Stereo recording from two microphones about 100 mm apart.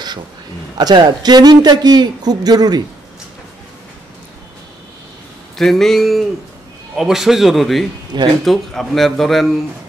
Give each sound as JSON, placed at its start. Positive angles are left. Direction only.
{"t": 0.7, "sound": "a man's voice", "side_deg": -40}
{"t": 5.6, "sound": "a man's voice", "side_deg": 5}
{"t": 8.1, "sound": "a man's voice", "side_deg": -45}
{"t": 8.5, "sound": "a man's voice", "side_deg": 0}